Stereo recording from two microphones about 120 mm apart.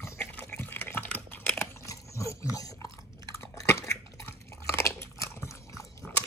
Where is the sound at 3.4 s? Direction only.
25° left (ahead or behind).